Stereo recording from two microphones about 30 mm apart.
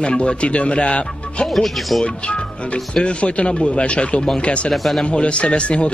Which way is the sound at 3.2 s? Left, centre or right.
Left.